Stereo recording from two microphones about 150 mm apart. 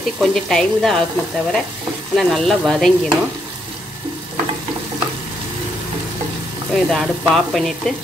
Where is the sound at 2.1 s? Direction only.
Centre (ahead or behind).